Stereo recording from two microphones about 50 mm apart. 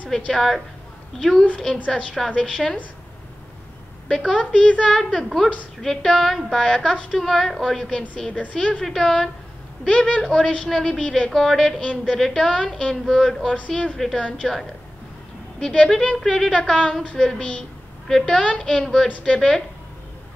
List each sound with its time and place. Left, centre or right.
0.3 s a woman's voice: centre
1.9 s a woman's voice: centre
4.1 s a woman's voice: centre
8.8 s a woman's voice: centre
9.8 s a woman's voice: centre
13.5 s speech: centre
13.9 s a woman's voice: centre